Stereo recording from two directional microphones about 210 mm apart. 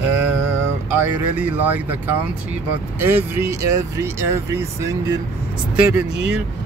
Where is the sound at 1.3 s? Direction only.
10° right (ahead or behind).